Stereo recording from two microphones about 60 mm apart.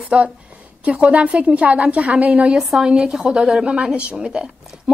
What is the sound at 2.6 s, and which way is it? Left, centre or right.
A woman's voice, centre.